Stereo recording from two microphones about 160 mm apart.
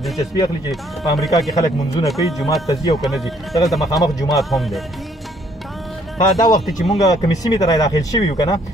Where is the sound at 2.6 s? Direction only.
25° left (ahead or behind).